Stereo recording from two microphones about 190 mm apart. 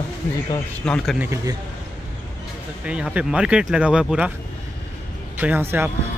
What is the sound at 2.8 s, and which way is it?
Speech, 5° right (ahead or behind).